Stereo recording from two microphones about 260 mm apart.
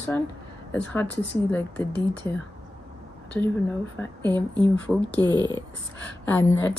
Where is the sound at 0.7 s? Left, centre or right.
Centre.